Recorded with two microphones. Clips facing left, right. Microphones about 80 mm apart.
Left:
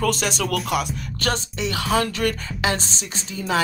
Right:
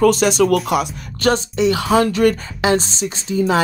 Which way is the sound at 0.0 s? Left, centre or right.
Right.